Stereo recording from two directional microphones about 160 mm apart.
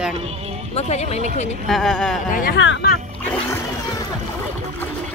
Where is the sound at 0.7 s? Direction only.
45° left (ahead or behind).